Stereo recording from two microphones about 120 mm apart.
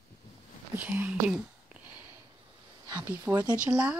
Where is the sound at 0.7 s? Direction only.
15° right (ahead or behind).